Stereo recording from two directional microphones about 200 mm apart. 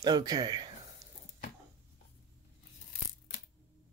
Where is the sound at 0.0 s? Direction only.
20° right (ahead or behind).